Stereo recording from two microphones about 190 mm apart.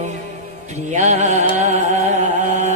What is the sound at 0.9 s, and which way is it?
Music, 35° right (ahead or behind).